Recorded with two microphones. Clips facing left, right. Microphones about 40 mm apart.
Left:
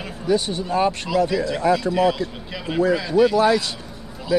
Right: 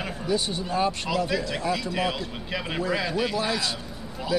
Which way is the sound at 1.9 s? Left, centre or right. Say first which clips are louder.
Left 8 dB; centre.